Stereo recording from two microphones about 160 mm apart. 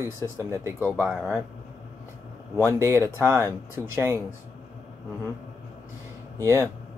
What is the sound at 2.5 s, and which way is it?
Speech, 15° right (ahead or behind).